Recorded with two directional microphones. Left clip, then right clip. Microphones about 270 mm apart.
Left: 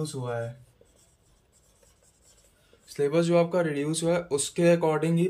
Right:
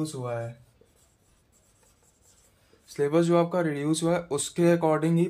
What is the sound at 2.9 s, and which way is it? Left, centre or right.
Speech, centre.